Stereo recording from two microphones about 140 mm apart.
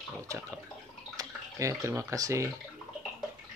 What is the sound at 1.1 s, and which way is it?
Speech, 25° right (ahead or behind).